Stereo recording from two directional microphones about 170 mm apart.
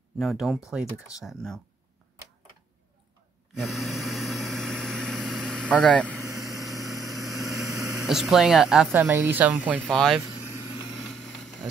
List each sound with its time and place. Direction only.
0.2 s speech: centre (ahead or behind)
3.5 s vehicle: centre (ahead or behind)
6.2 s vehicle: 20° right (ahead or behind)
8.1 s speech: centre (ahead or behind)
8.9 s speech: 15° right (ahead or behind)
9.8 s speech: centre (ahead or behind)
11.0 s vehicle: centre (ahead or behind)